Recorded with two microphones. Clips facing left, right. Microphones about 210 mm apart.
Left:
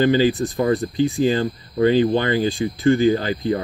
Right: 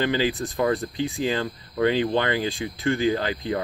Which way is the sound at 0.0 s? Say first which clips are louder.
Left 7 dB; 40° left (ahead or behind).